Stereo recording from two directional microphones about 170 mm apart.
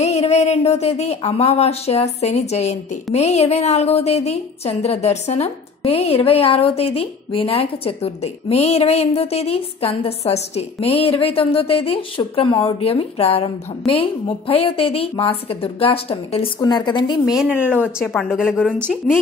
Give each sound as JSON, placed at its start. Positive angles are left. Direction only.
{"t": 0.0, "sound": "a woman's voice", "side_deg": 40}
{"t": 16.5, "sound": "a woman's voice", "side_deg": 25}
{"t": 17.4, "sound": "speech", "side_deg": -5}
{"t": 18.0, "sound": "speech", "side_deg": 0}